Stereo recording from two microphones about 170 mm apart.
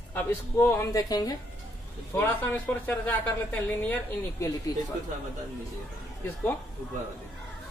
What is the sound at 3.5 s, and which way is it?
Speech, 10° left (ahead or behind).